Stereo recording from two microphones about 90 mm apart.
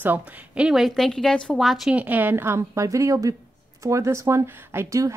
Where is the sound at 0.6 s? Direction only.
Centre (ahead or behind).